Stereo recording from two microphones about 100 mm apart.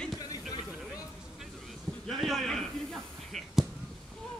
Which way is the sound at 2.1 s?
Centre (ahead or behind).